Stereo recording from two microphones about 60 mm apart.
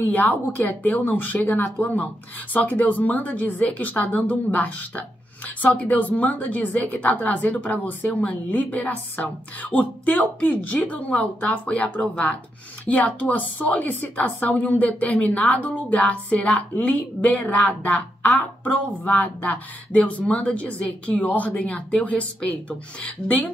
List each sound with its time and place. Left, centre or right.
0.1 s speech: left